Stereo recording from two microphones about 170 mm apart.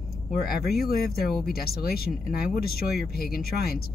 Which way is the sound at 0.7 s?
65° left (ahead or behind).